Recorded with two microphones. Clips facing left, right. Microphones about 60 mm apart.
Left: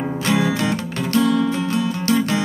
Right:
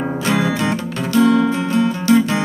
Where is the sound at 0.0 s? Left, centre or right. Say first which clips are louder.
Right 2 dB; right.